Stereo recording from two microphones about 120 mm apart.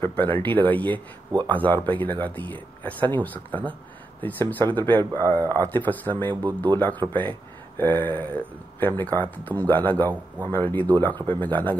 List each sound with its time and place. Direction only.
0.0 s speech: 15° left (ahead or behind)